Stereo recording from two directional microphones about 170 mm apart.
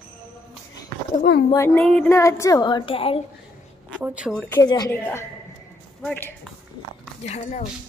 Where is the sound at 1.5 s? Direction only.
15° left (ahead or behind).